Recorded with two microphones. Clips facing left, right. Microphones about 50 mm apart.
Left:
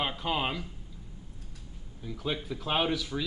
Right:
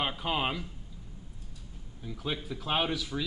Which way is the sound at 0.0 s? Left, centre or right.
Centre.